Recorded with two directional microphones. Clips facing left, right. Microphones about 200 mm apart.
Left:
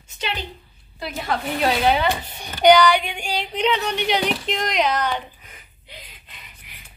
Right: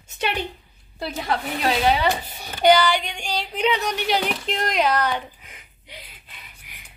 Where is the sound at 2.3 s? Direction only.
5° right (ahead or behind).